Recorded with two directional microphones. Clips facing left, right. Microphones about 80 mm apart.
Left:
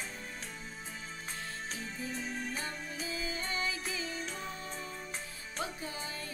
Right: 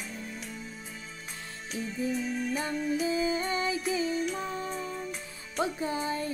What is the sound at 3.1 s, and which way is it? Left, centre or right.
Music, right.